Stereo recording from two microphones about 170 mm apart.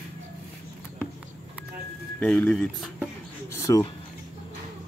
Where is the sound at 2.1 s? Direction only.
10° left (ahead or behind).